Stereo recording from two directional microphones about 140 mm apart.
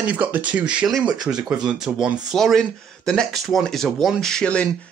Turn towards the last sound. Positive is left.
turn(degrees=5)  # may be behind; listen again after turning